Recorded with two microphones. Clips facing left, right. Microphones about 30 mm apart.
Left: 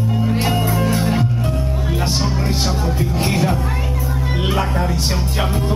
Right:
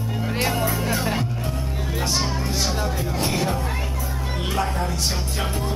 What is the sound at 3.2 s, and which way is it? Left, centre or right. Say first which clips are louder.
Music: left 5 dB; centre.